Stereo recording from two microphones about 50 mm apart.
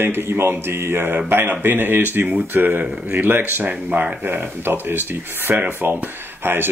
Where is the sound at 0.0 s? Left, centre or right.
Right.